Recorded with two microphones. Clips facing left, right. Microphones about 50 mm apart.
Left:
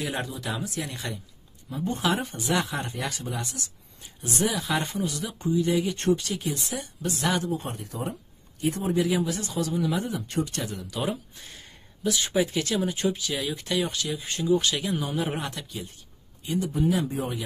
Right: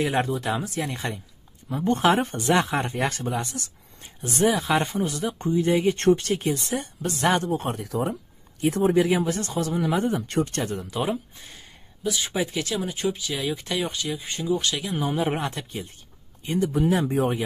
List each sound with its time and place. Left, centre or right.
0.0 s speech: right
1.7 s speech: right
2.5 s speech: right
4.4 s speech: right
7.5 s speech: right
8.9 s speech: right
10.0 s speech: right
10.4 s speech: right
10.8 s speech: right
11.3 s speech: centre
15.2 s speech: right
16.6 s speech: right